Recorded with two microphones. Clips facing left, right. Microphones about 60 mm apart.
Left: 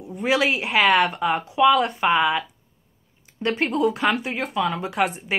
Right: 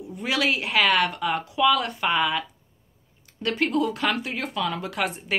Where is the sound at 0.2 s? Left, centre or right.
Left.